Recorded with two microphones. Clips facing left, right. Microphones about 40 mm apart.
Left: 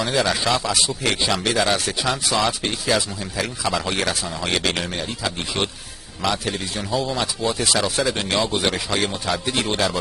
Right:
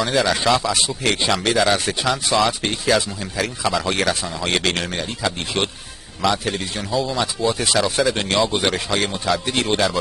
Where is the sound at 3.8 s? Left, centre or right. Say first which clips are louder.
Right 3 dB; centre.